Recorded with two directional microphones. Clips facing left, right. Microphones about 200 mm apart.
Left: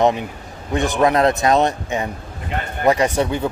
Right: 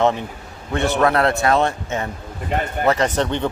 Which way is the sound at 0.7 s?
15° left (ahead or behind).